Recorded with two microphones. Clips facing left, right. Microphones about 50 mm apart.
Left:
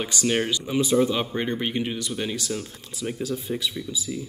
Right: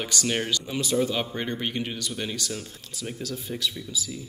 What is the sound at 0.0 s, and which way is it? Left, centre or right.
Speech, centre.